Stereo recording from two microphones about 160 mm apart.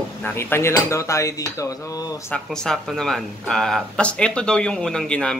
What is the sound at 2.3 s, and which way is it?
Speech, 5° left (ahead or behind).